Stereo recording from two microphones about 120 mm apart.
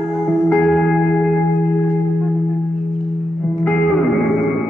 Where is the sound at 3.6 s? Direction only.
10° left (ahead or behind).